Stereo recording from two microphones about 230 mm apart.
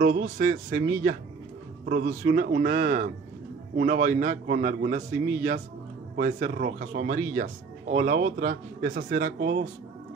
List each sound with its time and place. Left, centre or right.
0.0 s a man's voice: right